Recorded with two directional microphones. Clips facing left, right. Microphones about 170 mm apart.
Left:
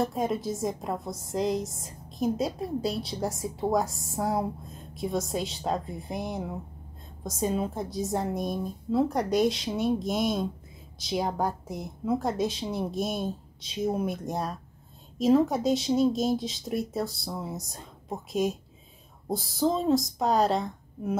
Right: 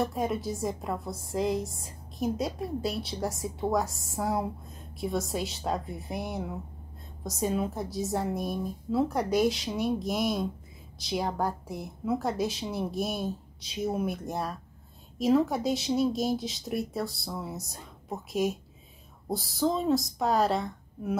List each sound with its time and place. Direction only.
0.1 s a woman's voice: centre (ahead or behind)
0.8 s a woman's voice: 20° left (ahead or behind)
1.1 s a woman's voice: centre (ahead or behind)